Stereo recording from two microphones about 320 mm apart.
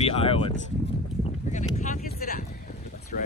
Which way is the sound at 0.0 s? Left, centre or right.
Centre.